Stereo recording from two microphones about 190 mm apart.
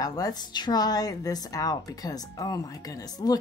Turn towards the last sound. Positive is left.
turn(degrees=20)  # may be behind; listen again after turning